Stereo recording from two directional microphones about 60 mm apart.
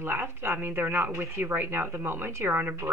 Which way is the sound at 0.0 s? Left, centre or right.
Right.